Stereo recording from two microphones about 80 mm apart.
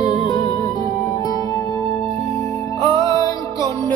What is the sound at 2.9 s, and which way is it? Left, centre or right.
Music, left.